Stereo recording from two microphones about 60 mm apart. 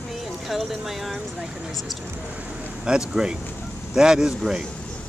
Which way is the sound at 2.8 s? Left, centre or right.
Centre.